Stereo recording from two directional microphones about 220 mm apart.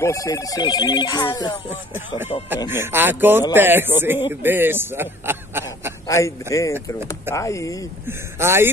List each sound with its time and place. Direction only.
0.0 s speech: 15° left (ahead or behind)
2.7 s a man's voice: 10° right (ahead or behind)
6.0 s speech: 15° left (ahead or behind)
8.4 s a man's voice: 10° right (ahead or behind)